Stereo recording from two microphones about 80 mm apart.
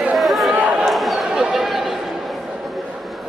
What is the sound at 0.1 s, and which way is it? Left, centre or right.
Chatter, centre.